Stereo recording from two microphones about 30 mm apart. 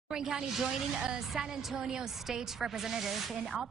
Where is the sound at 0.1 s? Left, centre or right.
Right.